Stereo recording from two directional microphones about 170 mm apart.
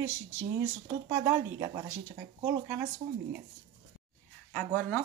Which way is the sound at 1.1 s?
15° right (ahead or behind).